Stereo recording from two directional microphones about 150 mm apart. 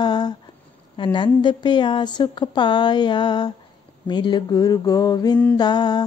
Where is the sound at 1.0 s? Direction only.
30° left (ahead or behind).